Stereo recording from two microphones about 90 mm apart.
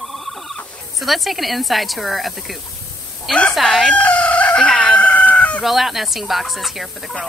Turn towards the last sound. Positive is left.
turn(degrees=0)  # may be behind; listen again after turning